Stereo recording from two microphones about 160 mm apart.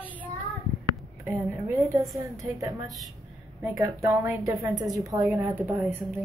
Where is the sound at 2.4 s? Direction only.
20° right (ahead or behind).